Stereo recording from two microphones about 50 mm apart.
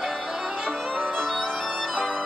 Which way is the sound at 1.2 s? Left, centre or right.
Centre.